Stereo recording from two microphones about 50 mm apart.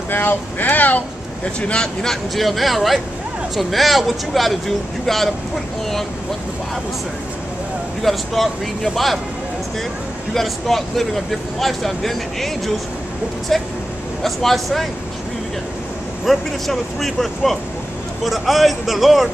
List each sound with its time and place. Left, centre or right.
0.1 s speech: left
1.6 s speech: centre
2.0 s speech: centre
8.0 s speech: centre
10.3 s speech: centre
16.3 s speech: centre